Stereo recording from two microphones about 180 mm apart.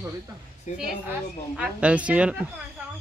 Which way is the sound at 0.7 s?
40° left (ahead or behind).